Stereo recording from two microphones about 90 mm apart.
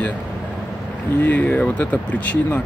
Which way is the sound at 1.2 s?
15° left (ahead or behind).